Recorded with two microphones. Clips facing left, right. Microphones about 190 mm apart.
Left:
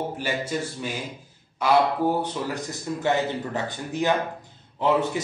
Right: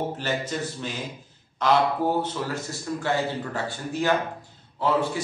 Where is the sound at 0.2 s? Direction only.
10° left (ahead or behind).